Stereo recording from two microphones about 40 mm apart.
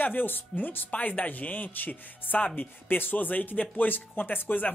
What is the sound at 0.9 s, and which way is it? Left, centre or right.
Speech, left.